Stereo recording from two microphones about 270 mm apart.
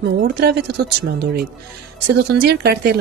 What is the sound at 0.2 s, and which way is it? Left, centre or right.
Speech, right.